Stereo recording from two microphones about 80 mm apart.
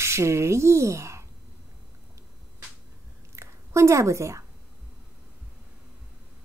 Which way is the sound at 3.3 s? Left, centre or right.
Right.